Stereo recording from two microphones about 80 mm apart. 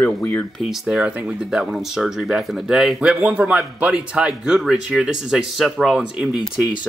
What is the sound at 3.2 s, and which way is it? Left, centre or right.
A man's voice, centre.